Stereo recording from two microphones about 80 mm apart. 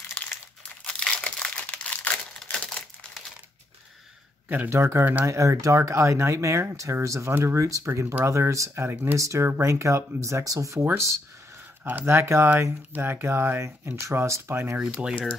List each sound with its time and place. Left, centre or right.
0.8 s crumpling: centre
4.5 s speech: right
11.8 s speech: right
14.8 s speech: centre